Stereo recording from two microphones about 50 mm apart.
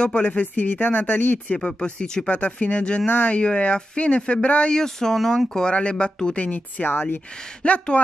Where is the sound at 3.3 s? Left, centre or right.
Left.